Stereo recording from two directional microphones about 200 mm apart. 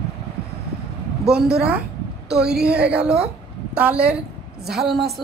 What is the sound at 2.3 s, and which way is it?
Speech, 55° right (ahead or behind).